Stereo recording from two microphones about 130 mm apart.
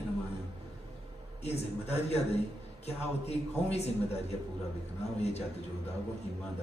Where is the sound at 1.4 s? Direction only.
55° left (ahead or behind).